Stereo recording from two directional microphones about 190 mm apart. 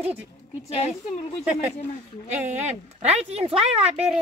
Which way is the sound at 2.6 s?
35° right (ahead or behind).